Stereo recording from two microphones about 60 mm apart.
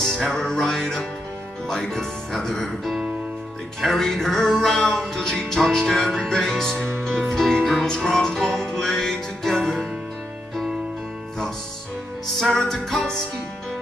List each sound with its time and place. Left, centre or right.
0.2 s music: centre
12.4 s music: centre